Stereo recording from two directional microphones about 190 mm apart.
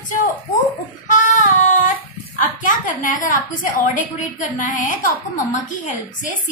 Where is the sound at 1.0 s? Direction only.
40° left (ahead or behind).